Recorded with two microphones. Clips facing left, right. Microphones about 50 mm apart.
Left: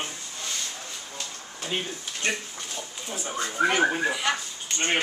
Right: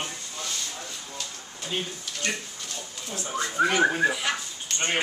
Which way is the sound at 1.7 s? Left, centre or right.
Left.